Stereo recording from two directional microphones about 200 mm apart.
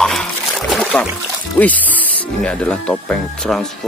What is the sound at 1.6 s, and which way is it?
Speech, 10° left (ahead or behind).